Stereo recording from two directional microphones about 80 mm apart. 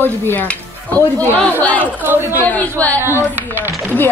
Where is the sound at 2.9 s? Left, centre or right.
Right.